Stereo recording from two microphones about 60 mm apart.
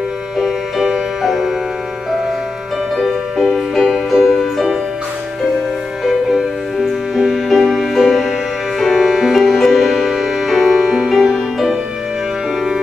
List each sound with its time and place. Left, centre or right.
0.4 s music: centre
3.0 s music: centre
7.2 s music: centre